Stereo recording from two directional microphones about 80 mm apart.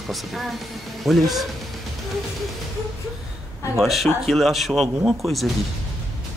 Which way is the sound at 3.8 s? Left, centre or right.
Centre.